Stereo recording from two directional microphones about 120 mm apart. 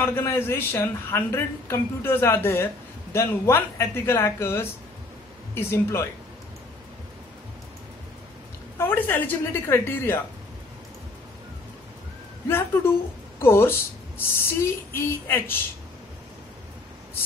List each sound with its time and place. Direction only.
0.0 s a woman's voice: 20° left (ahead or behind)
8.7 s speech: 15° left (ahead or behind)
12.4 s a woman's voice: 20° left (ahead or behind)